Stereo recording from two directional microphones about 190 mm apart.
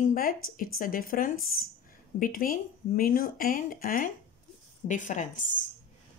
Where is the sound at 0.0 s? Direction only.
45° left (ahead or behind).